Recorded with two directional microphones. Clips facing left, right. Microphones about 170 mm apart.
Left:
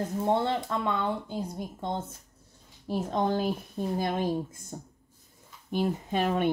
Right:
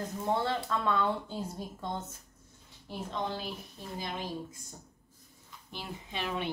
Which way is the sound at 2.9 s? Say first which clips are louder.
Left 8 dB; 45° left (ahead or behind).